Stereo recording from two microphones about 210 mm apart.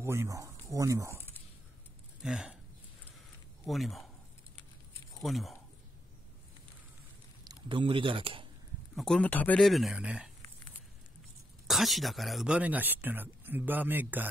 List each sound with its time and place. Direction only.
0.0 s speech: 10° right (ahead or behind)
2.2 s speech: 5° right (ahead or behind)
3.6 s speech: centre (ahead or behind)
5.1 s speech: centre (ahead or behind)
7.4 s speech: 25° right (ahead or behind)
8.9 s speech: 5° left (ahead or behind)
11.6 s speech: centre (ahead or behind)